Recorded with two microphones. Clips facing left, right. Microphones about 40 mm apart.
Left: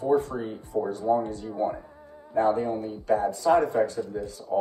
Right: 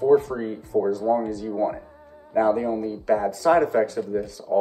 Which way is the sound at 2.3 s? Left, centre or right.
Right.